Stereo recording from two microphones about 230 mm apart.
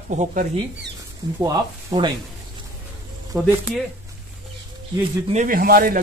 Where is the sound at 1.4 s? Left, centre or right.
Centre.